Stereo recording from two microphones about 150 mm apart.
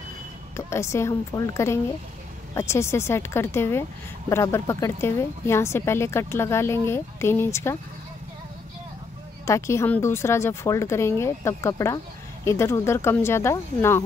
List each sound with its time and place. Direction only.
0.6 s a woman's voice: 20° left (ahead or behind)
9.5 s a woman's voice: 20° left (ahead or behind)